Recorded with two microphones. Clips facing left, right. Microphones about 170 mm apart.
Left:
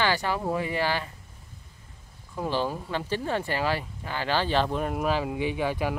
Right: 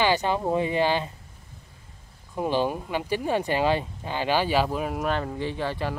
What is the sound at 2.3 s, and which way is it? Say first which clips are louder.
Speech: right 3 dB; 15° right (ahead or behind).